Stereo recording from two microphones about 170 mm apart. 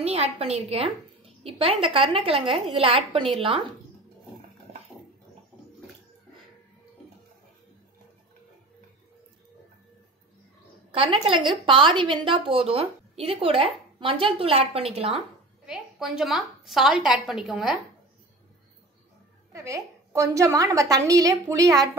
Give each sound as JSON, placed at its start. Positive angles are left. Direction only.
{"t": 0.0, "sound": "a woman's voice", "side_deg": -35}
{"t": 10.9, "sound": "a woman's voice", "side_deg": -30}
{"t": 15.6, "sound": "a woman's voice", "side_deg": -5}
{"t": 19.5, "sound": "a woman's voice", "side_deg": -20}